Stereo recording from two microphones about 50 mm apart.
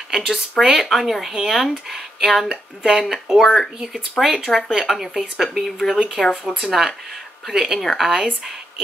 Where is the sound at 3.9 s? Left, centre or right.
Centre.